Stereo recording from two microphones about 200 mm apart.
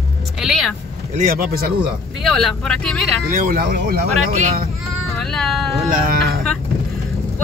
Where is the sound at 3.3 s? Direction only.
45° right (ahead or behind).